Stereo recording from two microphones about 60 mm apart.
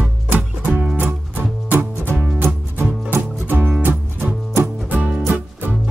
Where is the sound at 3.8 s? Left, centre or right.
Right.